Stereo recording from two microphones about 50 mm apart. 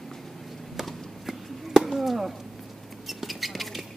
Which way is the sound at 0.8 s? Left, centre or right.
Centre.